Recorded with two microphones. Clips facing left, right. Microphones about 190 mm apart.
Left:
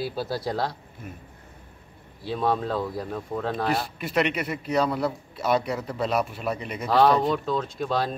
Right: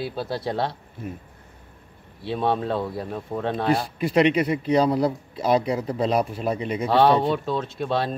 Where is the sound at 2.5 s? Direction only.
Centre (ahead or behind).